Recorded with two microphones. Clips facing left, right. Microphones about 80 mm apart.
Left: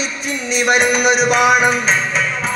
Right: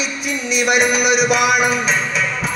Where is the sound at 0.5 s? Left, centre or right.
Left.